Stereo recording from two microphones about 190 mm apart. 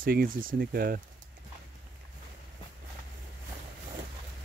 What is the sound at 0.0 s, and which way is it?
Speech, 50° right (ahead or behind).